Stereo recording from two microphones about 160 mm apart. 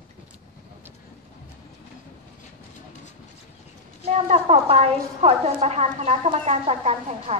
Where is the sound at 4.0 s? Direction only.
40° right (ahead or behind).